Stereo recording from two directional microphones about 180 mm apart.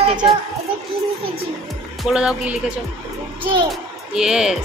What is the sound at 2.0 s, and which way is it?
Speech, 5° right (ahead or behind).